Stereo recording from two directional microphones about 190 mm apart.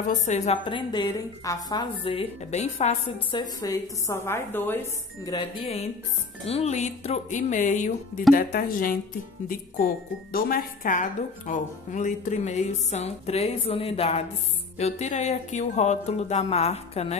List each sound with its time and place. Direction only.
0.1 s a woman's voice: 40° left (ahead or behind)
3.3 s a woman's voice: 15° left (ahead or behind)
5.3 s a woman's voice: 20° left (ahead or behind)
6.4 s speech: 35° left (ahead or behind)
8.4 s a woman's voice: 50° left (ahead or behind); by 17.2 s 35° left (ahead or behind)